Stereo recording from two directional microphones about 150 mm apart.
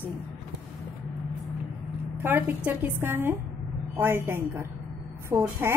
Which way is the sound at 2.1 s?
15° right (ahead or behind).